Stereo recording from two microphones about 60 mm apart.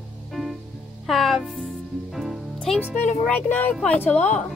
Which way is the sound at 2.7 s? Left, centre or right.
Centre.